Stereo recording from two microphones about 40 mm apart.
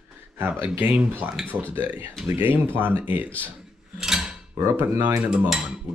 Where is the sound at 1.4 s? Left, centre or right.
Centre.